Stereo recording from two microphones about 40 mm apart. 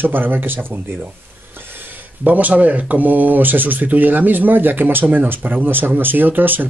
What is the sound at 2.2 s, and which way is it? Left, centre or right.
Speech, right.